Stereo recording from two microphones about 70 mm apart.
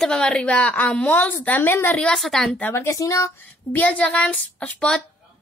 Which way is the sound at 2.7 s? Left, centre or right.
Left.